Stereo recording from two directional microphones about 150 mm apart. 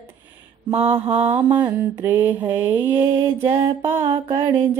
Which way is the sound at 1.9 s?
15° right (ahead or behind).